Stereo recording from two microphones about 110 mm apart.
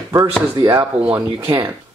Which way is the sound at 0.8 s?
10° right (ahead or behind).